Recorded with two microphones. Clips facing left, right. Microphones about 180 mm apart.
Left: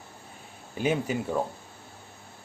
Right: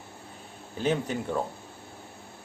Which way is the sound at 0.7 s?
10° left (ahead or behind).